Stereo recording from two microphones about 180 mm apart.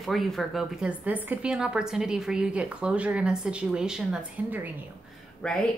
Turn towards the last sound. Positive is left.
turn(degrees=5)  # may be behind; listen again after turning